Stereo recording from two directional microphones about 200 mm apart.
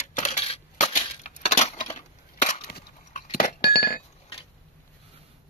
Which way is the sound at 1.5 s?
35° left (ahead or behind).